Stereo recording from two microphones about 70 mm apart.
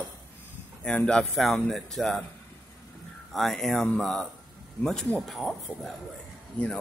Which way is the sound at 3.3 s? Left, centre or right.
Centre.